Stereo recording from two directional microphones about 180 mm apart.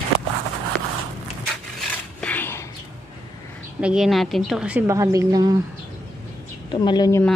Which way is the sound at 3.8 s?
5° right (ahead or behind).